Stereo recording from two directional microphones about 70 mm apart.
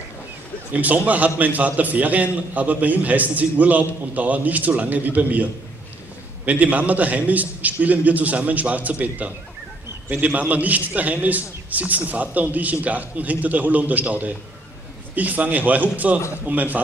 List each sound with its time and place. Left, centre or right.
0.7 s a man's voice: right